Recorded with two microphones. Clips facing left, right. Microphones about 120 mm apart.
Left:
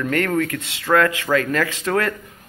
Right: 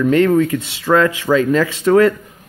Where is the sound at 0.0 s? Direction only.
15° right (ahead or behind).